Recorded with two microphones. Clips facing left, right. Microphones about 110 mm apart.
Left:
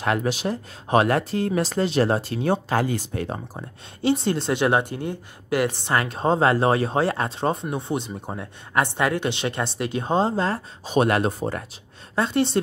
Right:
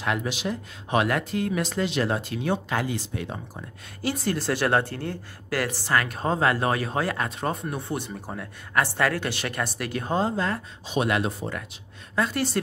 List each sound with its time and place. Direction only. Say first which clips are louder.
0.0 s speech: left 4 dB; 45° left (ahead or behind)
3.5 s speech: left 3 dB; 25° left (ahead or behind)
10.9 s speech: left 5 dB; 40° left (ahead or behind)
12.2 s speech: left 4 dB; 25° left (ahead or behind)